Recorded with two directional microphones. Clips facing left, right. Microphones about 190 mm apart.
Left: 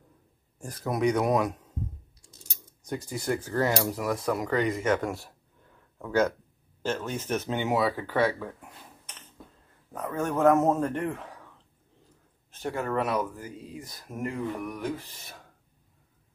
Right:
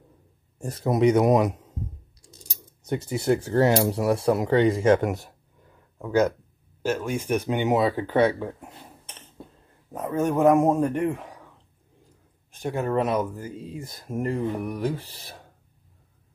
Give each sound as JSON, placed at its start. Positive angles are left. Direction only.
{"t": 0.6, "sound": "speech", "side_deg": -25}
{"t": 2.2, "sound": "coin", "side_deg": -35}
{"t": 2.8, "sound": "speech", "side_deg": -25}
{"t": 5.9, "sound": "a man's voice", "side_deg": -10}
{"t": 12.4, "sound": "speech", "side_deg": -15}